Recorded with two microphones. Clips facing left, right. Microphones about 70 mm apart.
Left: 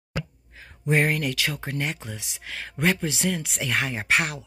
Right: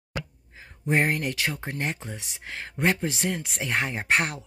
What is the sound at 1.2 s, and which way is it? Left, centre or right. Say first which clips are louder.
Speech: left 1 dB; right.